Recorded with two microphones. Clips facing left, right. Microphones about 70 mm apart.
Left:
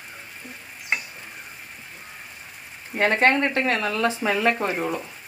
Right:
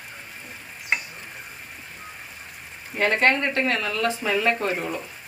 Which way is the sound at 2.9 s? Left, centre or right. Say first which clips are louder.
Left 1 dB; left.